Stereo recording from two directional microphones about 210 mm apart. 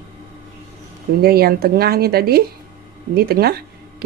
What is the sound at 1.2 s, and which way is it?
Speech, 45° right (ahead or behind).